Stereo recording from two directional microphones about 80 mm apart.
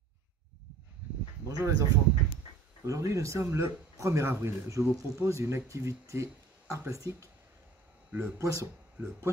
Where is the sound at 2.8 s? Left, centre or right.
Right.